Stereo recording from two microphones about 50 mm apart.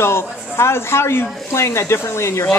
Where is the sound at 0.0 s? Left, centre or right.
Left.